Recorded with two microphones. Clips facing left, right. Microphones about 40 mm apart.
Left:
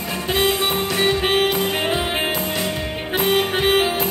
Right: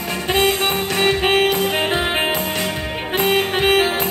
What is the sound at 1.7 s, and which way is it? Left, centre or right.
Music, right.